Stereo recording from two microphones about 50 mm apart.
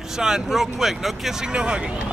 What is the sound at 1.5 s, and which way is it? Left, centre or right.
Speech, centre.